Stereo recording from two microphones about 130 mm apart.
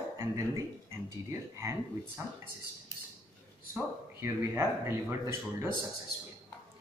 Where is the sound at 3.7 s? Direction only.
20° right (ahead or behind).